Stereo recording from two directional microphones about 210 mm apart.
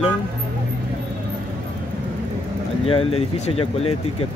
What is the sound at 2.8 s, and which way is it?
Speech, 25° left (ahead or behind).